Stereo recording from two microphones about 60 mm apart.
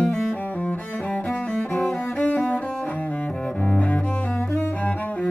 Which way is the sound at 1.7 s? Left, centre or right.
Centre.